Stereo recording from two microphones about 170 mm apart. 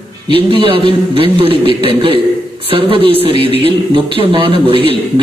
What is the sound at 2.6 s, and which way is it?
A man's voice, 30° right (ahead or behind).